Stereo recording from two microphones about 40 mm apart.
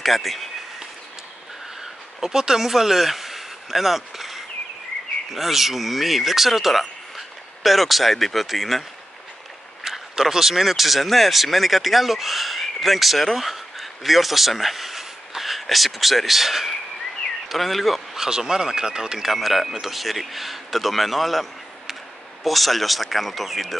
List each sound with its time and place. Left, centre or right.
0.0 s a man's voice: centre
1.8 s a sound: centre
5.3 s speech: centre
9.8 s a man's voice: centre
18.1 s speech: centre
19.2 s a man's voice: centre